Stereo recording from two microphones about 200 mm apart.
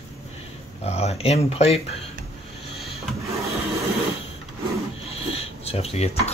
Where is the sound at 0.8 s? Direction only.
30° left (ahead or behind).